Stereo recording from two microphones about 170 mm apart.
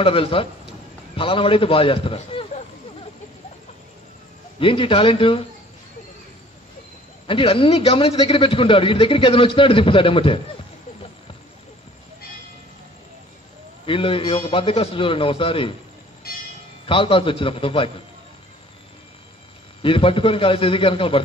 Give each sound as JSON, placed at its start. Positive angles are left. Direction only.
{"t": 0.0, "sound": "a man's voice", "side_deg": 30}
{"t": 4.6, "sound": "a man's voice", "side_deg": 30}
{"t": 7.2, "sound": "a man's voice", "side_deg": 30}
{"t": 13.8, "sound": "a man's voice", "side_deg": 30}
{"t": 16.3, "sound": "music", "side_deg": 65}
{"t": 16.8, "sound": "a man's voice", "side_deg": 30}
{"t": 19.8, "sound": "a man's voice", "side_deg": 30}